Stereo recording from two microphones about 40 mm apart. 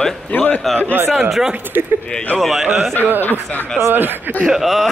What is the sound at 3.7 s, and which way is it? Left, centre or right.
Speech, right.